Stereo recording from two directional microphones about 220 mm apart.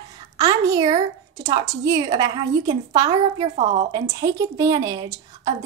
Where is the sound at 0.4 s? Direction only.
15° right (ahead or behind).